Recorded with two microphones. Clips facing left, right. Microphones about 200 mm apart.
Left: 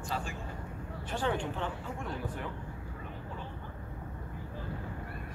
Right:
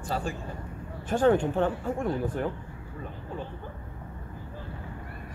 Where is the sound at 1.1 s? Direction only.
45° right (ahead or behind).